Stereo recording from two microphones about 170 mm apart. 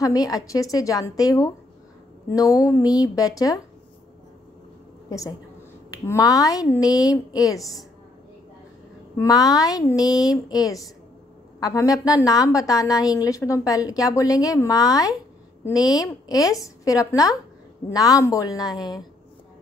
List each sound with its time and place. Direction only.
0.0 s a woman's voice: 20° left (ahead or behind)
5.9 s a woman's voice: 20° left (ahead or behind)
9.2 s a woman's voice: 20° left (ahead or behind)